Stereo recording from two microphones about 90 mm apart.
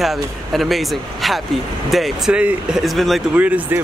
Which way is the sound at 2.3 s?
15° right (ahead or behind).